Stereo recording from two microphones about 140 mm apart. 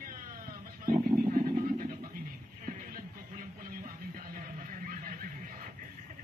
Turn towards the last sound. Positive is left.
turn(degrees=-75)  # may be behind; listen again after turning